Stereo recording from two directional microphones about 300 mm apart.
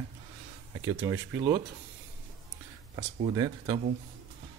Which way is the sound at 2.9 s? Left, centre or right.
Centre.